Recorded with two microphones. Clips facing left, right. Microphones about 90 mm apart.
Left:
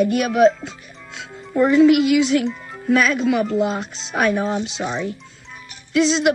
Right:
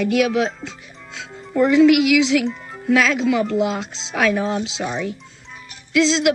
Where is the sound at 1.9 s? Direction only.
90° right.